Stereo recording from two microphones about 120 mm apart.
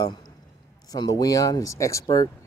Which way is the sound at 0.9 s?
35° left (ahead or behind).